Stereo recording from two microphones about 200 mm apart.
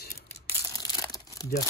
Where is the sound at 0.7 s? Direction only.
15° left (ahead or behind).